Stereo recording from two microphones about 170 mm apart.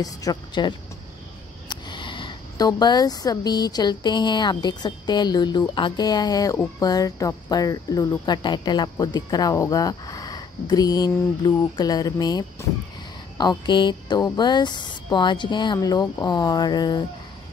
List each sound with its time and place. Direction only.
0.0 s speech: 20° left (ahead or behind)